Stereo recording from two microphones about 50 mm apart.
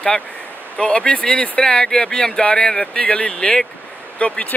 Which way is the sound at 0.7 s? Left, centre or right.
Left.